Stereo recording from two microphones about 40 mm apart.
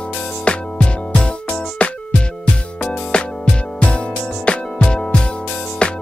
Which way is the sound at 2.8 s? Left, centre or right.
Left.